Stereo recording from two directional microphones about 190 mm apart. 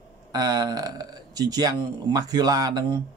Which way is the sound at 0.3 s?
20° right (ahead or behind).